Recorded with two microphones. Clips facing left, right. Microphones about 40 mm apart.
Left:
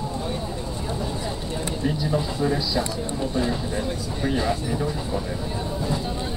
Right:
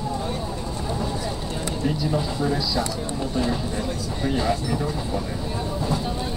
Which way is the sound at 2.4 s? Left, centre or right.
Left.